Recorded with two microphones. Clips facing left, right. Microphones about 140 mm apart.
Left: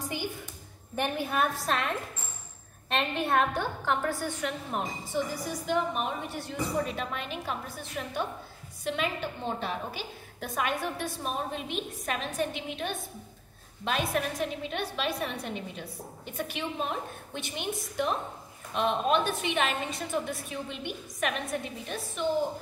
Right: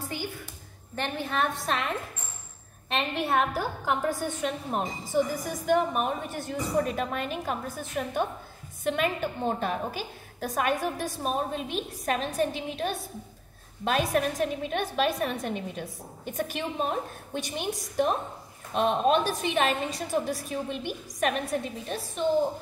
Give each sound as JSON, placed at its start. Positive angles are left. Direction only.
{"t": 0.0, "sound": "a sound", "side_deg": 15}
{"t": 0.9, "sound": "a woman's voice", "side_deg": 15}
{"t": 3.9, "sound": "a woman's voice", "side_deg": -20}
{"t": 5.1, "sound": "a woman's voice", "side_deg": -50}